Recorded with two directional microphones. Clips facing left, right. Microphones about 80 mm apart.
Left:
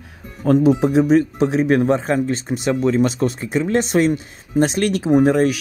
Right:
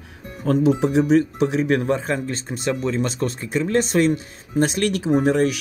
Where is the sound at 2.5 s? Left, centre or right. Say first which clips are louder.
Left 4 dB; centre.